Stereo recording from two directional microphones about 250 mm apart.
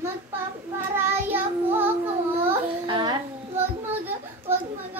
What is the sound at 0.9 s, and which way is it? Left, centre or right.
Child singing, centre.